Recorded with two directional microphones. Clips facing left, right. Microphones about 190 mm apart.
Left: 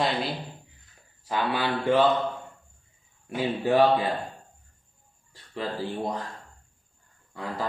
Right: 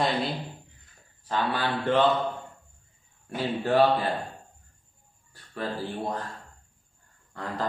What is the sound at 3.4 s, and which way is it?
Speech, 10° left (ahead or behind).